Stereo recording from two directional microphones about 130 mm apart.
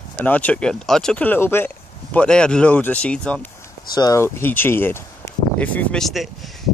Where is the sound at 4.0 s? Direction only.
25° left (ahead or behind).